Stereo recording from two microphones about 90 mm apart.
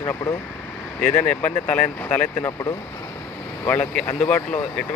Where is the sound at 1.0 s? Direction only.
15° left (ahead or behind).